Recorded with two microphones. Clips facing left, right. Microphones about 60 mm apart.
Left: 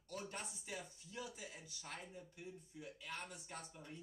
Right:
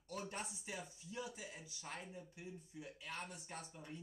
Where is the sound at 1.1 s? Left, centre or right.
Centre.